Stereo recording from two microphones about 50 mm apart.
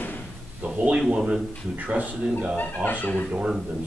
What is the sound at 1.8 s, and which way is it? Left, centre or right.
Speech, right.